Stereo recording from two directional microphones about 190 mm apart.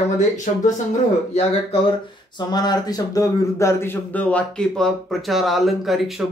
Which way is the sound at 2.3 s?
20° left (ahead or behind).